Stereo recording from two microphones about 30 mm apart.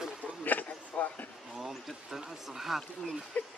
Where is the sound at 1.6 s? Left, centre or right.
Centre.